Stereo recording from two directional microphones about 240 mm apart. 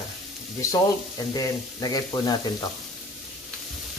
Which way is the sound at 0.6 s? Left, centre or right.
Centre.